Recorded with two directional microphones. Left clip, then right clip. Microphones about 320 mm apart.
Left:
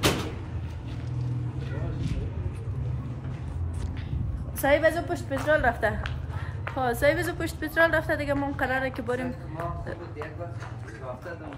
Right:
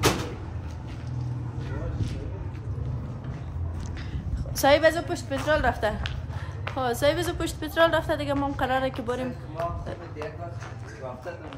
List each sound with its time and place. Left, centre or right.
4.6 s a woman's voice: centre